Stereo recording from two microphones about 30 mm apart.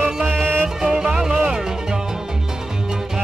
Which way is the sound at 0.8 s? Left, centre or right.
Right.